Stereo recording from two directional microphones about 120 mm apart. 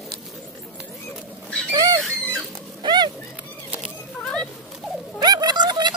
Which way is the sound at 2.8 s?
35° right (ahead or behind).